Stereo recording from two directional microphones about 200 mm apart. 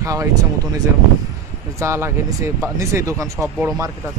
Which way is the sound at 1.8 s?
15° right (ahead or behind).